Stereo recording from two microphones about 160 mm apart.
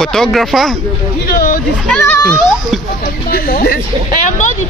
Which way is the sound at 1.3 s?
60° left (ahead or behind).